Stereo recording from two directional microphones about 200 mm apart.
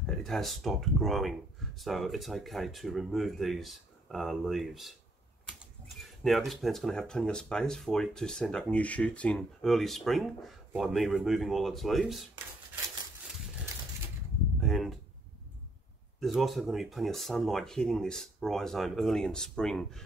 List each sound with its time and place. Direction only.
0.0 s speech: centre (ahead or behind)
5.9 s speech: centre (ahead or behind)
14.6 s a sound: centre (ahead or behind)
16.2 s speech: centre (ahead or behind)